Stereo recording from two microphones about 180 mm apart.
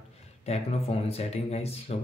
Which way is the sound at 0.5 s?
35° left (ahead or behind).